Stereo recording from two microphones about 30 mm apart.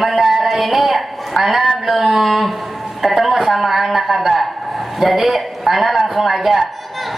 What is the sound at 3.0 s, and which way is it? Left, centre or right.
A woman's voice, centre.